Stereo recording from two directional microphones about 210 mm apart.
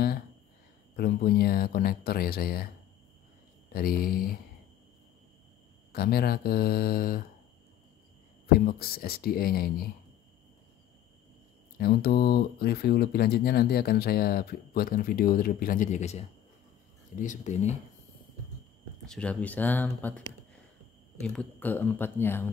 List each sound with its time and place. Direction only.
0.9 s speech: 45° left (ahead or behind)
3.7 s speech: 45° left (ahead or behind)
5.9 s speech: 45° left (ahead or behind)
8.5 s speech: 45° left (ahead or behind)
11.8 s speech: 50° left (ahead or behind)
19.0 s speech: 5° left (ahead or behind)